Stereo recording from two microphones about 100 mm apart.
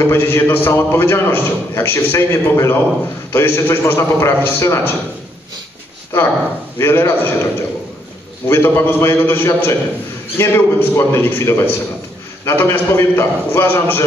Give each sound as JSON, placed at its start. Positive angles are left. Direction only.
{"t": 0.0, "sound": "a man's voice", "side_deg": 25}
{"t": 6.8, "sound": "a man's voice", "side_deg": 25}
{"t": 8.5, "sound": "a man's voice", "side_deg": 25}